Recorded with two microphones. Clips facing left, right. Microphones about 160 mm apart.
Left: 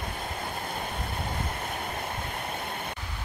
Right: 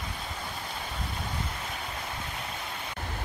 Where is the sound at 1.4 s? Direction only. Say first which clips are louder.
Left 3 dB; 55° left (ahead or behind).